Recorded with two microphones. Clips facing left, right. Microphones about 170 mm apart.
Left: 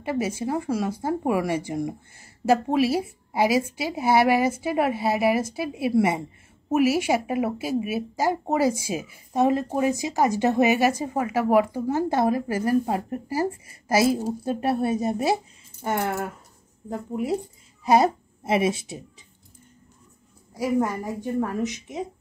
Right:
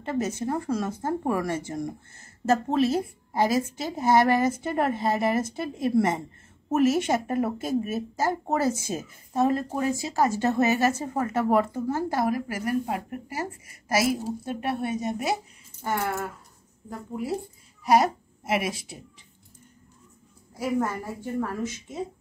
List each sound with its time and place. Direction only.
0.0 s a woman's voice: 10° left (ahead or behind); by 15.3 s 30° left (ahead or behind)
15.8 s a woman's voice: 20° left (ahead or behind)
20.5 s a woman's voice: 15° left (ahead or behind)